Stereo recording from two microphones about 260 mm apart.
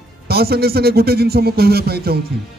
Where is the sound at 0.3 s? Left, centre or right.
Right.